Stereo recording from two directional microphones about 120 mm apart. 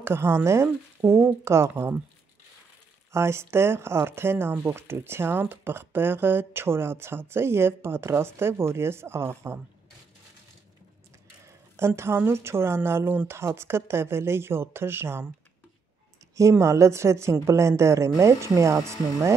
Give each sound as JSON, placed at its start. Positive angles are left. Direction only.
{"t": 0.0, "sound": "speech", "side_deg": -20}
{"t": 3.1, "sound": "speech", "side_deg": -20}
{"t": 11.4, "sound": "speech", "side_deg": -20}
{"t": 16.3, "sound": "speech", "side_deg": -25}